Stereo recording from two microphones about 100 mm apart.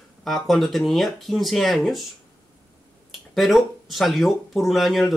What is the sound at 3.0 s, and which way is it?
Speech, centre (ahead or behind).